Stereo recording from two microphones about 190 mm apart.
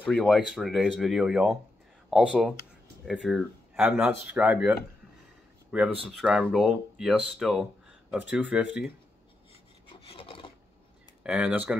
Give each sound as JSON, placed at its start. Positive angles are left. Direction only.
{"t": 0.0, "sound": "speech", "side_deg": 5}
{"t": 9.5, "sound": "filing", "side_deg": 30}
{"t": 11.2, "sound": "speech", "side_deg": -5}